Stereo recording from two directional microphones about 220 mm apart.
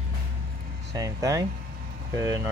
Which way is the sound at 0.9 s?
15° right (ahead or behind).